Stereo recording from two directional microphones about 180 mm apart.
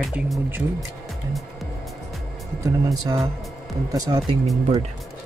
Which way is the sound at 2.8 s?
20° right (ahead or behind).